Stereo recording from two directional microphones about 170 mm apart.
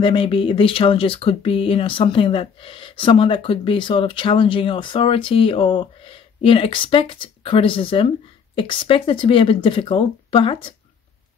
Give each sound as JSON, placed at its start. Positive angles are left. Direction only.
{"t": 0.0, "sound": "speech", "side_deg": 30}